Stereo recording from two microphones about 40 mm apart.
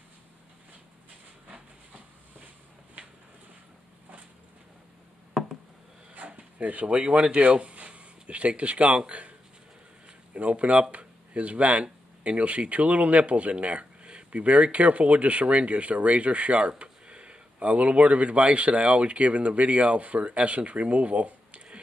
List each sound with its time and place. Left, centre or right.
6.1 s a sound: right
7.2 s speech: right
10.3 s speech: right